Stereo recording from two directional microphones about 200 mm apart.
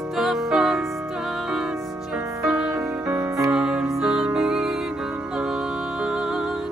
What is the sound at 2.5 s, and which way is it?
Music, 5° right (ahead or behind).